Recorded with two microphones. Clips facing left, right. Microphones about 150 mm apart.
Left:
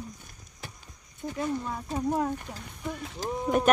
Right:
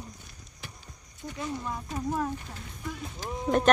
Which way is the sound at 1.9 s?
25° left (ahead or behind).